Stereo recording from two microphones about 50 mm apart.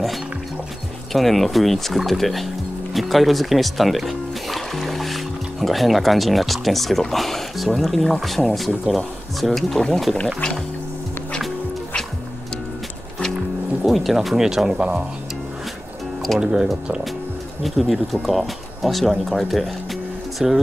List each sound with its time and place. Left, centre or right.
1.1 s speech: centre
10.2 s speech: centre
13.8 s speech: centre
16.3 s speech: centre
17.6 s speech: centre